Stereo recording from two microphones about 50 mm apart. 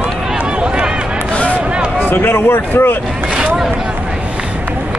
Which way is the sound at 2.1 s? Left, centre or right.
Left.